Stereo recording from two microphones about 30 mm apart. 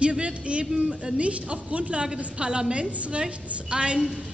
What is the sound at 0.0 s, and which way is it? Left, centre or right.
A man's voice, right.